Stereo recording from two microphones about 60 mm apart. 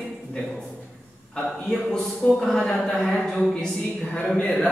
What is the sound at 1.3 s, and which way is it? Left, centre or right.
A man's voice, centre.